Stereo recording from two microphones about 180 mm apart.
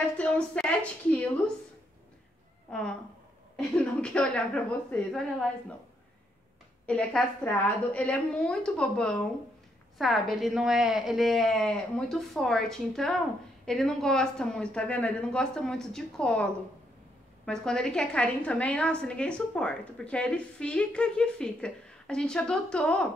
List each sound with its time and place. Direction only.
0.2 s a woman's voice: 5° left (ahead or behind)
2.7 s a woman's voice: 5° left (ahead or behind)
6.9 s a woman's voice: 5° left (ahead or behind)
17.5 s a woman's voice: 5° left (ahead or behind)